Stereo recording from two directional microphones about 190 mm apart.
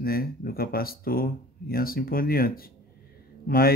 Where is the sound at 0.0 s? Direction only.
50° left (ahead or behind).